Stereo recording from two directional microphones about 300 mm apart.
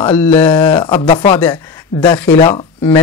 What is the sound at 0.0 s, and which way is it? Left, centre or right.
Speech, centre.